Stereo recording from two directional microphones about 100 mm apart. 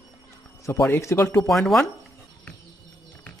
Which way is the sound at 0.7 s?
25° left (ahead or behind).